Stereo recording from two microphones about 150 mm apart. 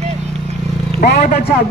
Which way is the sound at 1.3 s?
90° left.